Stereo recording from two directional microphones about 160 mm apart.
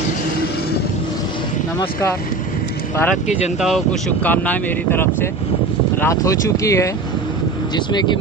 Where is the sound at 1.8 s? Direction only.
20° left (ahead or behind).